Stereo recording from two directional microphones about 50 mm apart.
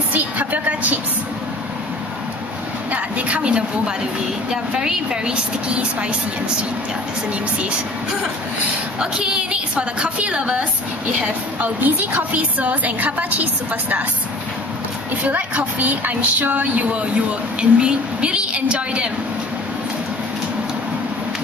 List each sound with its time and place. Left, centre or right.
0.1 s a sound: right
2.9 s a woman's voice: right
9.0 s a woman's voice: centre; by 14.0 s right
15.2 s a woman's voice: right
17.6 s a woman's voice: centre